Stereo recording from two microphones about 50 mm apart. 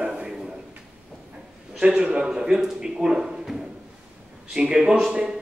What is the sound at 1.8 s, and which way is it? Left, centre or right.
A man's voice, centre.